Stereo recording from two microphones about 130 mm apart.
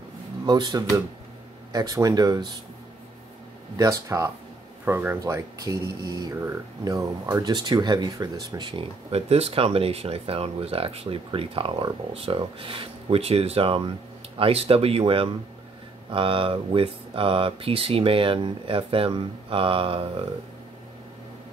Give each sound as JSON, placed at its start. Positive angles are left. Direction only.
{"t": 0.5, "sound": "speech", "side_deg": -30}
{"t": 3.7, "sound": "speech", "side_deg": -25}
{"t": 9.1, "sound": "speech", "side_deg": -50}